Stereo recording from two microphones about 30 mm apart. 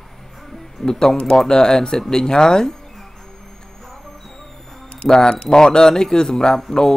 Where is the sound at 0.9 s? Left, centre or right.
Left.